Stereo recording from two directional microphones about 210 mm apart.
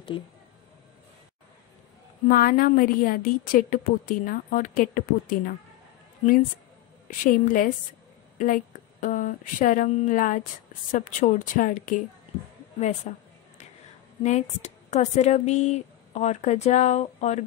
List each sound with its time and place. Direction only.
2.2 s speech: 40° left (ahead or behind)
7.1 s a woman's voice: 40° left (ahead or behind)
13.1 s speech: 35° left (ahead or behind)